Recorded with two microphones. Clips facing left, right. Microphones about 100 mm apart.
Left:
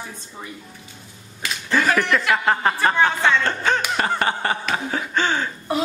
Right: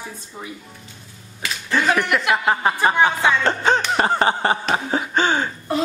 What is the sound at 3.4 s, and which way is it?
Music, 25° right (ahead or behind).